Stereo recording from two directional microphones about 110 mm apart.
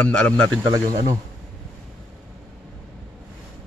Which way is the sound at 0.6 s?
30° right (ahead or behind).